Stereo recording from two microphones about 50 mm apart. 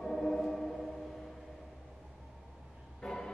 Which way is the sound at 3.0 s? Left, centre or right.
Centre.